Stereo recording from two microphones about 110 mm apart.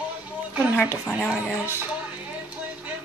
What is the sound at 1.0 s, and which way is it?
Speech, 10° left (ahead or behind).